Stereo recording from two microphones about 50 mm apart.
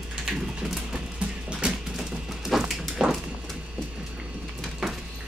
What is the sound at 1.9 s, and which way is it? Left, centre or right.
Music, centre.